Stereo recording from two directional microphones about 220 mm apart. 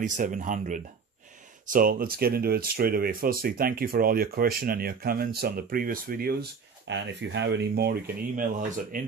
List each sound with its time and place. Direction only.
0.0 s speech: 35° right (ahead or behind)